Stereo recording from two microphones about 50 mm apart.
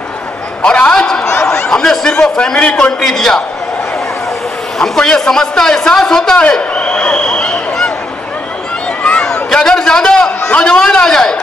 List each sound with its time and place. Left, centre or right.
0.6 s a man's voice: left
3.0 s a man's voice: centre
4.7 s a man's voice: centre
6.7 s a sound: left
9.2 s a man's voice: centre